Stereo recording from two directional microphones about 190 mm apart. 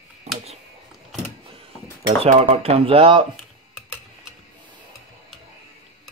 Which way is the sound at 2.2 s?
35° right (ahead or behind).